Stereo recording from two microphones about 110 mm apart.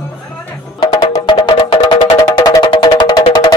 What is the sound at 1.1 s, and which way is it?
Music, 40° left (ahead or behind).